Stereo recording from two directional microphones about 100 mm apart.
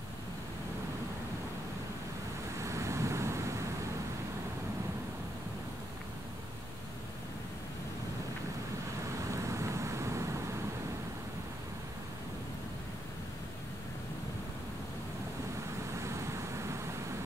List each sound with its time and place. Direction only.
2.6 s vehicle: 30° right (ahead or behind)
9.3 s vehicle: 30° right (ahead or behind)
16.0 s vehicle: 30° right (ahead or behind)